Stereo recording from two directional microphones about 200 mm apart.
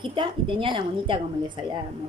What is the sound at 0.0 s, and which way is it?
A woman's voice, 25° right (ahead or behind).